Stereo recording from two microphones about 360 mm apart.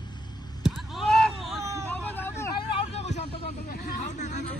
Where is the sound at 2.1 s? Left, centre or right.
Centre.